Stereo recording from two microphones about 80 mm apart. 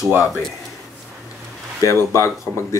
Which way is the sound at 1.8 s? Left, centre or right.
Left.